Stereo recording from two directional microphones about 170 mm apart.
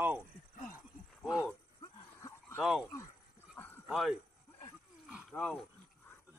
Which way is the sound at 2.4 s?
Centre (ahead or behind).